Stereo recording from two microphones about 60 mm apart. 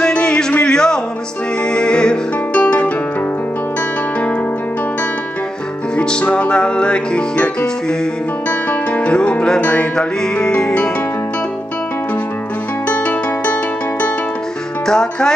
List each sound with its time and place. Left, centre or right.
0.0 s music: centre
5.9 s music: centre
12.8 s music: left
14.9 s music: centre